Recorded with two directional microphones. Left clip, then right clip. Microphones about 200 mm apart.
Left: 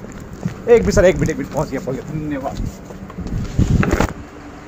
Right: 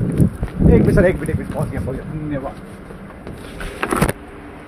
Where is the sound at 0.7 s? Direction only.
40° left (ahead or behind).